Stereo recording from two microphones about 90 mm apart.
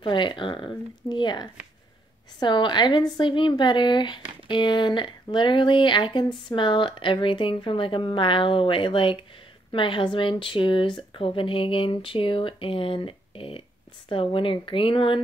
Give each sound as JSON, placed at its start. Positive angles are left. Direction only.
{"t": 0.0, "sound": "a sound", "side_deg": 65}
{"t": 2.4, "sound": "speech", "side_deg": 60}
{"t": 14.0, "sound": "speech", "side_deg": 75}